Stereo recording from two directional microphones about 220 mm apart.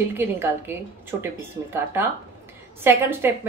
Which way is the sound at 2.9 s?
10° right (ahead or behind).